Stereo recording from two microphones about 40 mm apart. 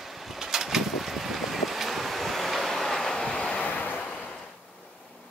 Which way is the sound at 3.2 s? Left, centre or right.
Left.